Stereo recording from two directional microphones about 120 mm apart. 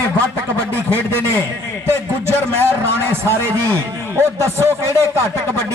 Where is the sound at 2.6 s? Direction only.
20° right (ahead or behind).